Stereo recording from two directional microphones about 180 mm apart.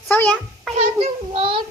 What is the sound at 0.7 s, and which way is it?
Child singing, 35° right (ahead or behind).